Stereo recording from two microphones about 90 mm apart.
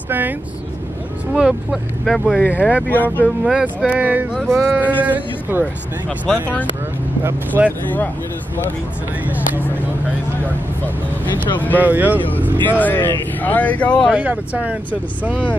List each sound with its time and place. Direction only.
0.1 s speech: 20° right (ahead or behind)
1.3 s speech: 10° right (ahead or behind)
2.0 s speech: centre (ahead or behind)
2.5 s speech: 15° right (ahead or behind)
2.9 s speech: 20° left (ahead or behind)
3.3 s speech: 5° right (ahead or behind)
3.6 s speech: 15° right (ahead or behind)
6.0 s speech: 10° left (ahead or behind)
7.2 s speech: 20° right (ahead or behind)
11.8 s speech: 20° right (ahead or behind)
12.6 s speech: 20° left (ahead or behind)
14.1 s speech: 15° right (ahead or behind)